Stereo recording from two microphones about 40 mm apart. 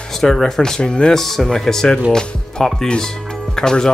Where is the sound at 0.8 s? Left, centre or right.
Left.